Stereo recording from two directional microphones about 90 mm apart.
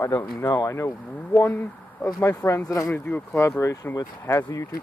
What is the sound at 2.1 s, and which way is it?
Speech, 35° left (ahead or behind).